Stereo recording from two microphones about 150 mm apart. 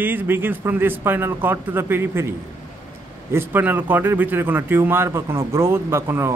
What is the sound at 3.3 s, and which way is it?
A man's voice, 15° right (ahead or behind).